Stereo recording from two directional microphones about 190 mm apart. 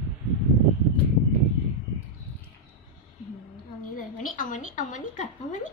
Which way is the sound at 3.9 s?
45° left (ahead or behind).